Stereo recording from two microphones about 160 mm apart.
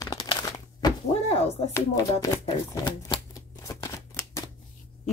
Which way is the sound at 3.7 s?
20° left (ahead or behind).